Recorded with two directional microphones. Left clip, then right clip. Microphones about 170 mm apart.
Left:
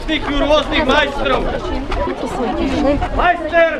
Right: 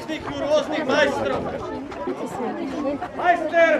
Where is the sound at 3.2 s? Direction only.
10° left (ahead or behind).